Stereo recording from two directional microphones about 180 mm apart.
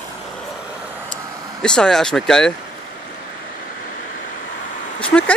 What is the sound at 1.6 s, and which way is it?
Speech, 5° left (ahead or behind).